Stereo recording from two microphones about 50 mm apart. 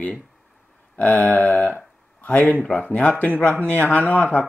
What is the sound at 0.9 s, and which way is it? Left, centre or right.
Speech, left.